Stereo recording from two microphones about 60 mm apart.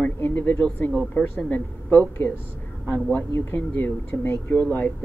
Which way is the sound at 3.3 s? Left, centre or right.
Left.